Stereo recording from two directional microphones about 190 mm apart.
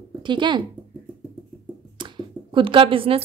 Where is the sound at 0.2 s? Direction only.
25° right (ahead or behind).